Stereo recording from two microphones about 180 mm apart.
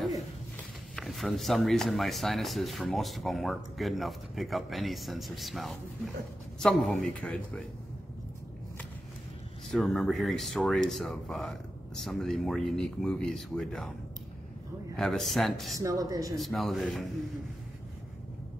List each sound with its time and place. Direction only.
0.0 s speech: centre (ahead or behind)
9.7 s speech: centre (ahead or behind)
15.0 s speech: centre (ahead or behind)
15.8 s speech: 20° right (ahead or behind)
16.3 s speech: centre (ahead or behind)